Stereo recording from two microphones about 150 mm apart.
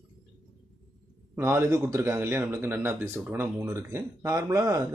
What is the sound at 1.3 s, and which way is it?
A man's voice, 20° right (ahead or behind).